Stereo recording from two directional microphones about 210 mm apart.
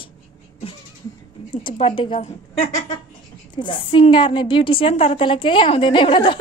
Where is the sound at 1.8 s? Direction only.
25° left (ahead or behind).